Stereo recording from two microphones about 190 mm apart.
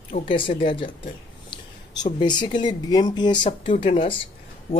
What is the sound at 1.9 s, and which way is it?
A man's voice, 25° left (ahead or behind).